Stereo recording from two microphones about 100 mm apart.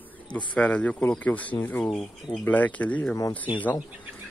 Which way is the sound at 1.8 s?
5° left (ahead or behind).